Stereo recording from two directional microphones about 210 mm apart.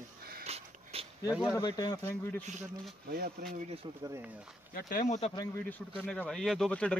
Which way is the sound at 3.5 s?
30° right (ahead or behind).